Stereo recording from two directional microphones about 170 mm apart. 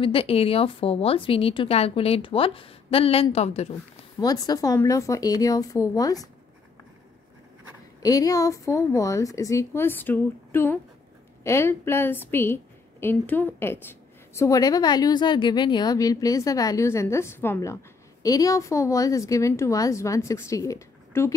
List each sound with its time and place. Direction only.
0.0 s a woman's voice: 30° left (ahead or behind)
4.2 s a woman's voice: 20° left (ahead or behind)
8.0 s a woman's voice: 20° left (ahead or behind)